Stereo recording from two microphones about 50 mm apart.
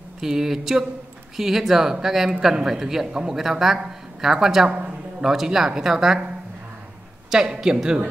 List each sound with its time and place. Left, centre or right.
0.2 s a woman's voice: centre
4.6 s a man's voice: right
5.2 s a woman's voice: centre
7.2 s a woman's voice: centre